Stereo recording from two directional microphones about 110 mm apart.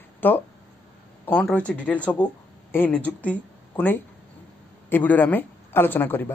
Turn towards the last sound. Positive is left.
turn(degrees=20)  # may be behind; listen again after turning